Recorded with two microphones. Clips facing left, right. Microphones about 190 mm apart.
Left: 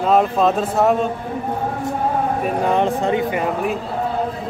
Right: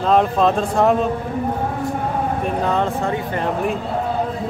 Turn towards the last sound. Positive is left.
turn(degrees=0)  # may be behind; listen again after turning